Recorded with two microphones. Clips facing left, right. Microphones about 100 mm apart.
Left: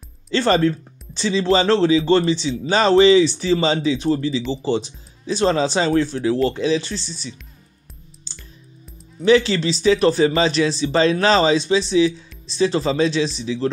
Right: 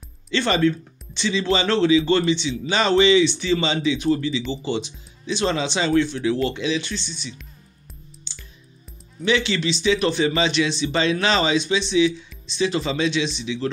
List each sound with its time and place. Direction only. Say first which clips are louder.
0.3 s speech: left 3 dB; 35° left (ahead or behind)
8.3 s music: left 4 dB; 35° left (ahead or behind)
9.2 s speech: left 6 dB; 35° left (ahead or behind)